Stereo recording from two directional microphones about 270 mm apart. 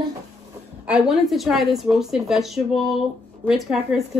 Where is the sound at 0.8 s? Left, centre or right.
Centre.